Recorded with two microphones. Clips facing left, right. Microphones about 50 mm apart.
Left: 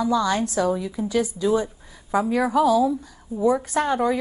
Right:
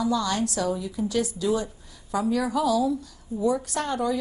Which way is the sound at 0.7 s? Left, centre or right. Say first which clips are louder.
Left 4 dB; left.